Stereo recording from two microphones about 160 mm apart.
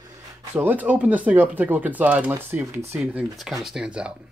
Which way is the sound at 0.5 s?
10° right (ahead or behind).